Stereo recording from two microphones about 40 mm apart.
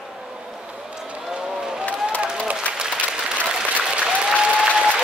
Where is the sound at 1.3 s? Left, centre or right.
Centre.